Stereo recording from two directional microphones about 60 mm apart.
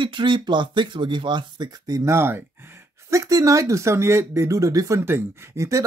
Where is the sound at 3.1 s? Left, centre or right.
Right.